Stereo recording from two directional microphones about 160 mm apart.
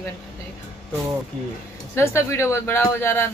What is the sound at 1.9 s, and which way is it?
A woman's voice, 15° left (ahead or behind).